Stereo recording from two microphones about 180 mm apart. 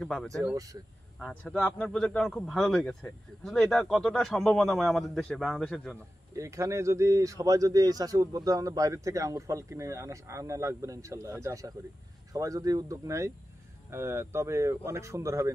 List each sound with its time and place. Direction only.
0.0 s a man's voice: 5° left (ahead or behind)
6.3 s speech: 15° right (ahead or behind)